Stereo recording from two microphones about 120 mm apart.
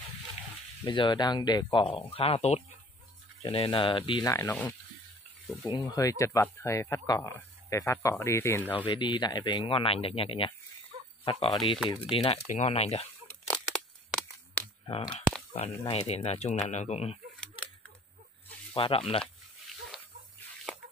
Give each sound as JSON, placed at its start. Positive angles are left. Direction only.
{"t": 0.8, "sound": "speech", "side_deg": 40}
{"t": 3.4, "sound": "speech", "side_deg": 45}
{"t": 4.2, "sound": "speech", "side_deg": 25}
{"t": 5.7, "sound": "speech", "side_deg": 40}
{"t": 5.9, "sound": "speech", "side_deg": 30}
{"t": 8.8, "sound": "speech", "side_deg": 40}
{"t": 11.5, "sound": "speech", "side_deg": 45}
{"t": 13.5, "sound": "a sound", "side_deg": 5}
{"t": 14.6, "sound": "a sound", "side_deg": 15}
{"t": 14.9, "sound": "speech", "side_deg": 45}
{"t": 15.8, "sound": "speech", "side_deg": 55}
{"t": 18.8, "sound": "speech", "side_deg": 50}